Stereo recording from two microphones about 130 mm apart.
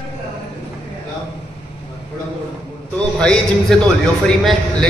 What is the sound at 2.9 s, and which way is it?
A man's voice, 5° left (ahead or behind).